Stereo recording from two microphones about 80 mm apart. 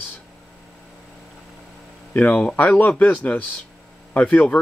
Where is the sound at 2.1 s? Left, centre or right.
Centre.